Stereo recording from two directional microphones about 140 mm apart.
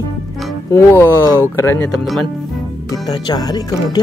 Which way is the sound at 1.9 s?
Centre (ahead or behind).